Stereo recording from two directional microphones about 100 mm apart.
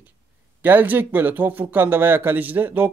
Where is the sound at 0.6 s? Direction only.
20° right (ahead or behind).